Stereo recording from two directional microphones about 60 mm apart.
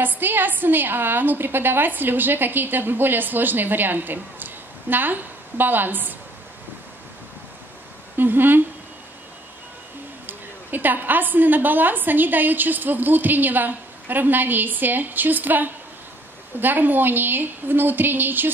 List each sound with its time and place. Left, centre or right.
0.0 s a woman's voice: right
8.2 s a woman's voice: right
10.2 s a woman's voice: right